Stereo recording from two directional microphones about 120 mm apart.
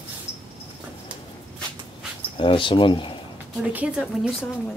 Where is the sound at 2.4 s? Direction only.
45° left (ahead or behind).